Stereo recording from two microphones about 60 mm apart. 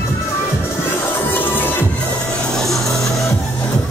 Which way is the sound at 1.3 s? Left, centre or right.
Left.